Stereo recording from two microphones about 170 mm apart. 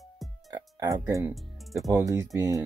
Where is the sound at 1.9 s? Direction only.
15° right (ahead or behind).